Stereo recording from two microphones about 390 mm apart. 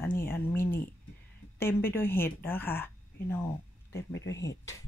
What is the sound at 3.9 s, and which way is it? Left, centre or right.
Speech, left.